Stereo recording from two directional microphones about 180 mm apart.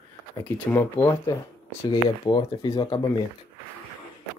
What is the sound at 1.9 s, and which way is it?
Speech, 25° left (ahead or behind).